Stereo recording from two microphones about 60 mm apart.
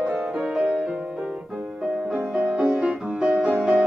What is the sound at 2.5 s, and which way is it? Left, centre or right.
Music, centre.